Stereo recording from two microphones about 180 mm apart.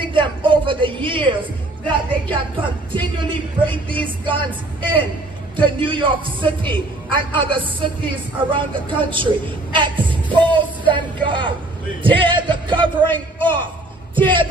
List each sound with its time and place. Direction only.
0.0 s a man's voice: 25° right (ahead or behind)